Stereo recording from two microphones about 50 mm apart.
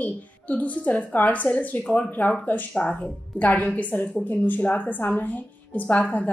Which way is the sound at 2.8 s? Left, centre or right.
Left.